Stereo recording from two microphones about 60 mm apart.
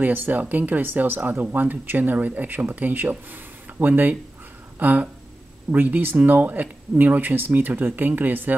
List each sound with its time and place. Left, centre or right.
0.0 s speech: right